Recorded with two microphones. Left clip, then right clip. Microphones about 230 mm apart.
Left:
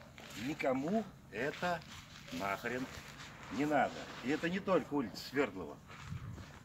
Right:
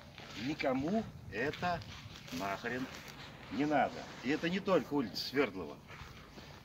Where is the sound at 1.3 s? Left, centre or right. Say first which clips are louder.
Right 1 dB; left.